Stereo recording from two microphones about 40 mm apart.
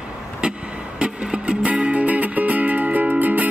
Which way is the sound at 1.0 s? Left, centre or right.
Right.